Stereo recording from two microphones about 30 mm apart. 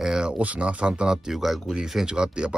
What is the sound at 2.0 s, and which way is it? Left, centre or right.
Speech, right.